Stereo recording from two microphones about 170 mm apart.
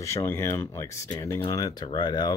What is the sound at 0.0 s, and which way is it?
Speech, 15° left (ahead or behind).